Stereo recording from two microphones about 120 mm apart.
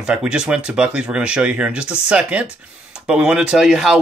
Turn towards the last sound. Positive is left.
turn(degrees=-5)  # may be behind; listen again after turning